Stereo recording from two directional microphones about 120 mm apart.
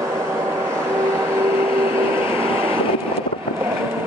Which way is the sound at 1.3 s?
20° right (ahead or behind).